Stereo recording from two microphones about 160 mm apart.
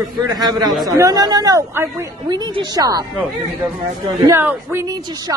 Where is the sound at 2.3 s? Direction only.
25° right (ahead or behind).